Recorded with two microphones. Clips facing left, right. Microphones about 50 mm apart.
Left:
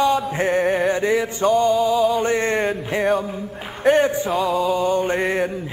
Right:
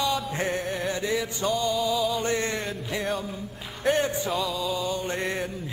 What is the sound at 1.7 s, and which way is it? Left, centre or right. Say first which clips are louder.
Music: left 8 dB; centre.